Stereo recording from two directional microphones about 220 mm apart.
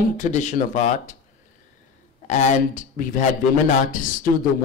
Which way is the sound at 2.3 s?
35° left (ahead or behind).